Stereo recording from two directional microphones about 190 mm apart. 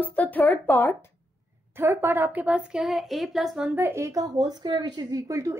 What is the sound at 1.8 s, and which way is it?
A woman's voice, 10° right (ahead or behind).